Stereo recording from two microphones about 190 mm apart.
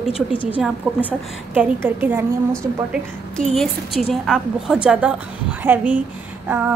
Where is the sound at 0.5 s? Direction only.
5° right (ahead or behind).